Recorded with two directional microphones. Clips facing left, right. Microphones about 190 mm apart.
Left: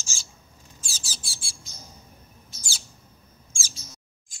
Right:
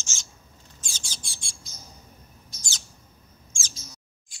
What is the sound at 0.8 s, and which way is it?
Mouse, 5° left (ahead or behind).